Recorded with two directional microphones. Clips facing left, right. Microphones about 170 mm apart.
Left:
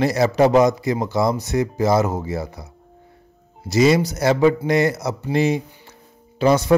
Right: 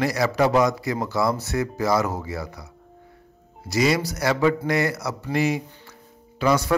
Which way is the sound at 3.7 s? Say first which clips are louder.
Left 6 dB; 25° left (ahead or behind).